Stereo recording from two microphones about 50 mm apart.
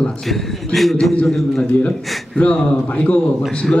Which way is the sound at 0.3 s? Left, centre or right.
Centre.